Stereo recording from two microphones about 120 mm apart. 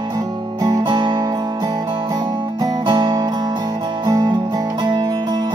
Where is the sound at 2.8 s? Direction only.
45° right (ahead or behind).